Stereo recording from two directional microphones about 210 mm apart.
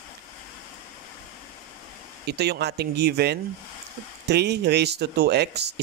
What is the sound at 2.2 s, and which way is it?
Speech, 50° right (ahead or behind).